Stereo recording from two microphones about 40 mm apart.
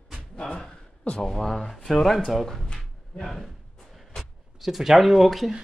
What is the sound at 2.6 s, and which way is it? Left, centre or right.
Cupboard open or close, centre.